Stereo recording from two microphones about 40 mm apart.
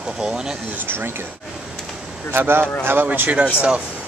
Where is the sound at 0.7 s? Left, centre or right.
Right.